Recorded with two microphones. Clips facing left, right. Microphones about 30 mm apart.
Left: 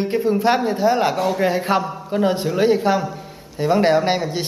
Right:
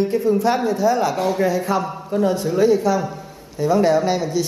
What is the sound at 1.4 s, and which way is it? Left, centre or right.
Speech, left.